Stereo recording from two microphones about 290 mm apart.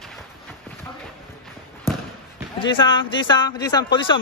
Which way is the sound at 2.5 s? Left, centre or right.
Centre.